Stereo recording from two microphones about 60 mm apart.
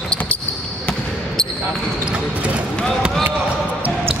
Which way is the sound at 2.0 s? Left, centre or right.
Centre.